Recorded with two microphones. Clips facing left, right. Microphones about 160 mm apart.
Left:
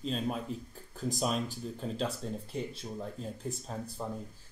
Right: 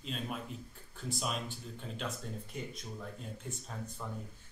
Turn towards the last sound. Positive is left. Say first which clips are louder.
# left 5 dB
turn(degrees=35)  # may be behind; listen again after turning